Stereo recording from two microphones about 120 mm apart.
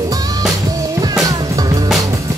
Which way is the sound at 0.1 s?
30° right (ahead or behind).